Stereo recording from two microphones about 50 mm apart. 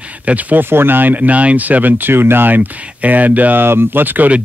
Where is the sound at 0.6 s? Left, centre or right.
Right.